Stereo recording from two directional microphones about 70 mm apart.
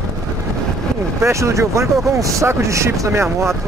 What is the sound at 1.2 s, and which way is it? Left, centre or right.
Speech, right.